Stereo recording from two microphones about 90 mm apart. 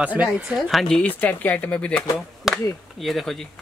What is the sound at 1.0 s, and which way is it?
Speech, 20° left (ahead or behind).